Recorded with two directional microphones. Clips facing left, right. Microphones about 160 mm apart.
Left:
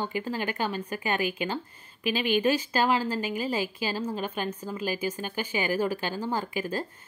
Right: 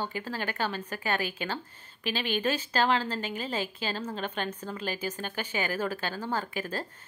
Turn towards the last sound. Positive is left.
turn(degrees=10)  # may be behind; listen again after turning